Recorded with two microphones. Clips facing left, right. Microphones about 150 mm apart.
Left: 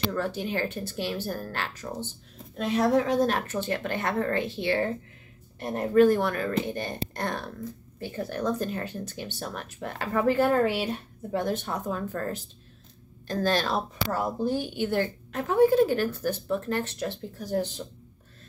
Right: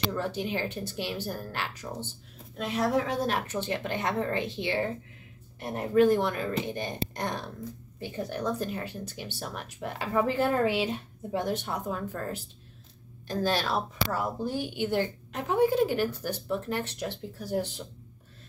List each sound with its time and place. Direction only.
0.1 s a woman's voice: 15° right (ahead or behind)
2.5 s a woman's voice: centre (ahead or behind)